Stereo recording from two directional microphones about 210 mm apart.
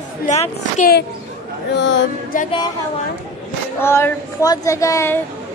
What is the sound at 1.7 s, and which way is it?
Speech, 55° left (ahead or behind).